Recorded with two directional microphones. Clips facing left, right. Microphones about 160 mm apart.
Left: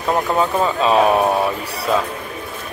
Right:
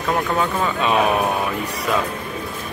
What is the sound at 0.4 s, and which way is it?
Speech, 30° left (ahead or behind).